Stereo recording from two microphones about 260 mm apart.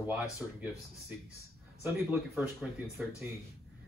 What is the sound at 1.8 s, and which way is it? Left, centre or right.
Speech, centre.